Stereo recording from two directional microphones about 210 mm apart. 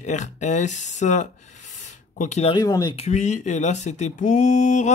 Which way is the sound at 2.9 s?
30° left (ahead or behind).